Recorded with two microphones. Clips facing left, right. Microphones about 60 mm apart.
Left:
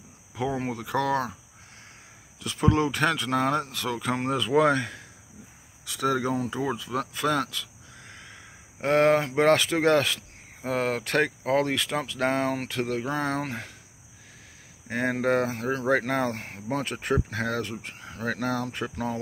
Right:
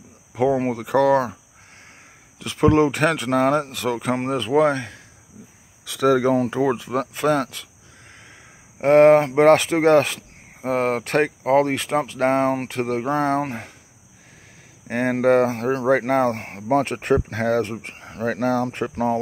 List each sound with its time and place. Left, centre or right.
0.5 s speech: right
2.4 s speech: right
4.6 s speech: centre
5.9 s speech: right
8.8 s speech: right
14.9 s speech: right
16.0 s speech: right